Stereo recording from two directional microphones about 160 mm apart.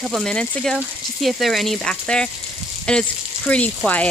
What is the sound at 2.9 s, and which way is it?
Speech, 5° left (ahead or behind).